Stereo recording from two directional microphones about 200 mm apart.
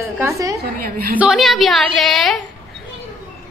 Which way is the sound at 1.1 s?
5° right (ahead or behind).